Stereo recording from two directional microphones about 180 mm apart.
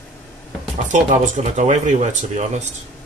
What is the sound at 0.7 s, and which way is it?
Speech, 45° right (ahead or behind).